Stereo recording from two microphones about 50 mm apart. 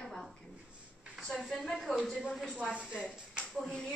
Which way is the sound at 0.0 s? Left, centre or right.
Centre.